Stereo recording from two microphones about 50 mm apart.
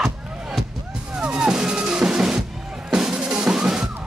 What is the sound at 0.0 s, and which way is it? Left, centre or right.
Music, centre.